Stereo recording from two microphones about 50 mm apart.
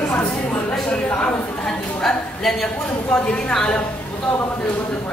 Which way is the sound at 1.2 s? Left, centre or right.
Left.